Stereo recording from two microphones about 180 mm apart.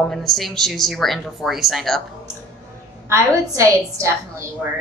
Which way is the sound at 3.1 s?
15° right (ahead or behind).